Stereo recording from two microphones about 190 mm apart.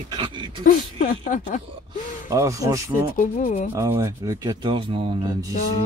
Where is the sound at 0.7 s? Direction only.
45° left (ahead or behind).